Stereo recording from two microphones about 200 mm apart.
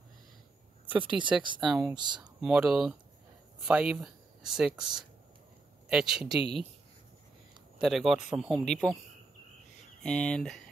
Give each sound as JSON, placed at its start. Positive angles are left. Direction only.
{"t": 0.9, "sound": "speech", "side_deg": -5}
{"t": 2.0, "sound": "speech", "side_deg": -20}
{"t": 2.4, "sound": "speech", "side_deg": -5}
{"t": 7.8, "sound": "speech", "side_deg": 0}
{"t": 10.0, "sound": "speech", "side_deg": 5}